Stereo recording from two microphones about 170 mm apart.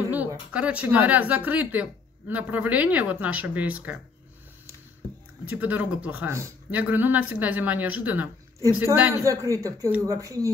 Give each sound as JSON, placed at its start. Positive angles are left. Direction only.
{"t": 0.1, "sound": "speech", "side_deg": -10}
{"t": 5.4, "sound": "speech", "side_deg": -10}